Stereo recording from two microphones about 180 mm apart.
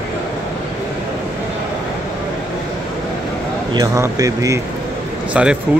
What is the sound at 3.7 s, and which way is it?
Speech, 20° right (ahead or behind).